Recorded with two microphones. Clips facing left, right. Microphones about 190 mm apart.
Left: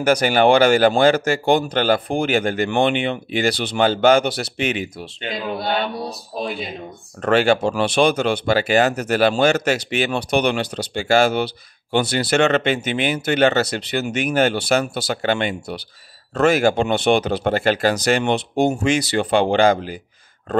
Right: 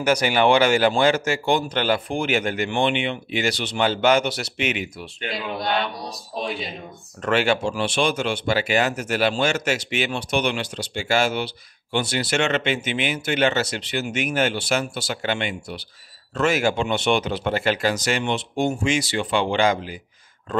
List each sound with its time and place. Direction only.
0.0 s speech: 55° left (ahead or behind)
1.1 s speech: 50° left (ahead or behind); by 5.3 s 30° left (ahead or behind)
5.6 s mantra: 5° left (ahead or behind)
7.2 s speech: 40° left (ahead or behind)